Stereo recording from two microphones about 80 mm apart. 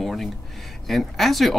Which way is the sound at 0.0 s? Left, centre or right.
Centre.